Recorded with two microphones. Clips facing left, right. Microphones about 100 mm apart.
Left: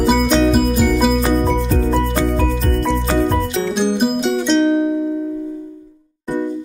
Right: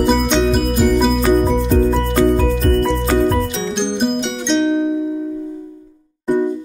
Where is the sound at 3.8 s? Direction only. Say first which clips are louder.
Left 1 dB; 5° left (ahead or behind).